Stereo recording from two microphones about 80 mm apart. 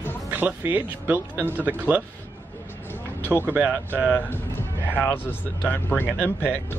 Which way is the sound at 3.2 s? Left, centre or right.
Left.